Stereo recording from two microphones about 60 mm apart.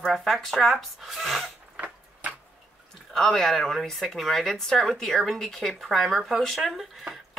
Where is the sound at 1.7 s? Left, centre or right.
Right.